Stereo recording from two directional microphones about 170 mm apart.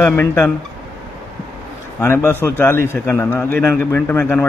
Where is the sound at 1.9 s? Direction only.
15° left (ahead or behind).